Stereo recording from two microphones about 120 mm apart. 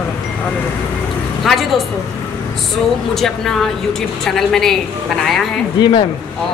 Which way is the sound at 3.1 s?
5° left (ahead or behind).